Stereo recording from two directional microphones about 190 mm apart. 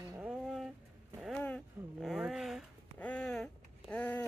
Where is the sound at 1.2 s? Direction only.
5° left (ahead or behind).